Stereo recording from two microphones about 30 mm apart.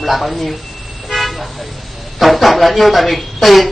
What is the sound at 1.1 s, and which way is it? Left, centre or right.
Toot, centre.